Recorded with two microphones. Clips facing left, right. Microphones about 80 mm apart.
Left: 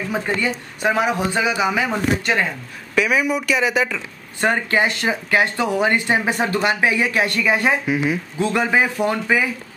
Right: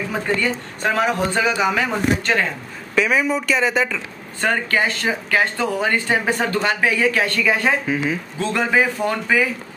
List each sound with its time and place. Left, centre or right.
0.1 s speech: centre
4.4 s speech: centre